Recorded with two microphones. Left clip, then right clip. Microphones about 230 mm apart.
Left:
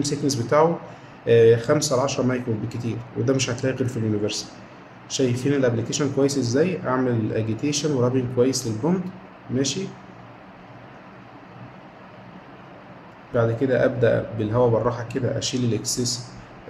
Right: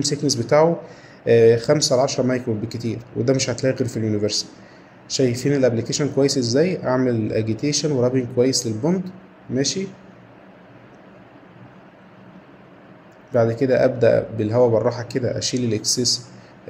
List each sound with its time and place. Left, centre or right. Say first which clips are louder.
0.5 s a man's voice: right 2 dB; centre
13.3 s speech: right 3 dB; centre
15.9 s speech: right 6 dB; centre